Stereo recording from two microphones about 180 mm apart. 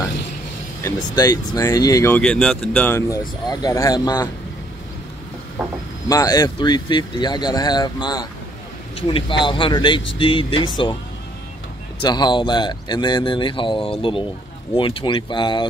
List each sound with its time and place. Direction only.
0.8 s speech: 20° left (ahead or behind)
3.1 s speech: 20° left (ahead or behind)
5.6 s speech: 5° right (ahead or behind)
6.0 s speech: 20° left (ahead or behind)
12.0 s speech: 25° left (ahead or behind)